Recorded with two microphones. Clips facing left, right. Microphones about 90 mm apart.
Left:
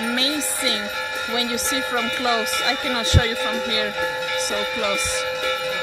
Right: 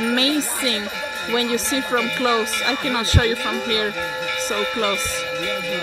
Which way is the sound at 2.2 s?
30° right (ahead or behind).